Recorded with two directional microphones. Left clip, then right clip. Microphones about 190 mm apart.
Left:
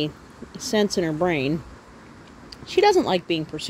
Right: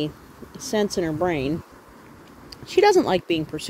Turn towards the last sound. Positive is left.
turn(degrees=-10)  # may be behind; listen again after turning